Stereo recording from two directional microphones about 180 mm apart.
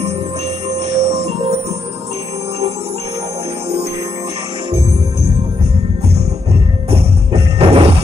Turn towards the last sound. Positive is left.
turn(degrees=-35)  # may be behind; listen again after turning